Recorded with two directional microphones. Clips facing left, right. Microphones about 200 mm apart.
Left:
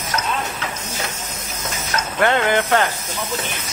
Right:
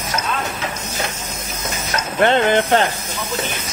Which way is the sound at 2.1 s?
25° right (ahead or behind).